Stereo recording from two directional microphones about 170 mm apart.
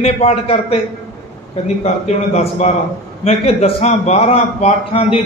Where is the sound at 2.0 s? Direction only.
40° left (ahead or behind).